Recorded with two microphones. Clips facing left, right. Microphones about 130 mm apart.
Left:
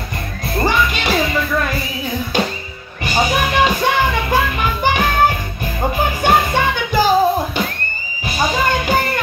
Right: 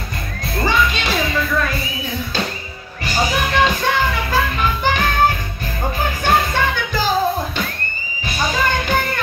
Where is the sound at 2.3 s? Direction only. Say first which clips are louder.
Left 4 dB; 15° left (ahead or behind).